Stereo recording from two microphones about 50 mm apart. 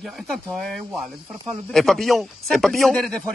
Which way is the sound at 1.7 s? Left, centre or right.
Centre.